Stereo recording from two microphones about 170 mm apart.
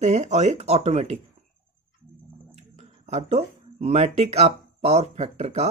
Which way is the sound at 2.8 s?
40° right (ahead or behind).